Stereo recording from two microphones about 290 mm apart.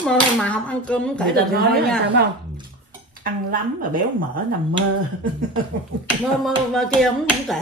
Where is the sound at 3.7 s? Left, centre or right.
Right.